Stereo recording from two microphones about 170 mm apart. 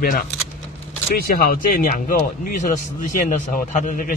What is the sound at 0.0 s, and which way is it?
Speech, 60° left (ahead or behind).